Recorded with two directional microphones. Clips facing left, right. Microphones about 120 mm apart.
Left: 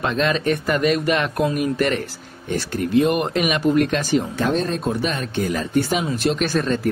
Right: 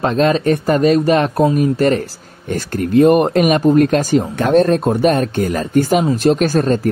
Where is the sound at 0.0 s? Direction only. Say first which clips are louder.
Right 6 dB; 35° right (ahead or behind).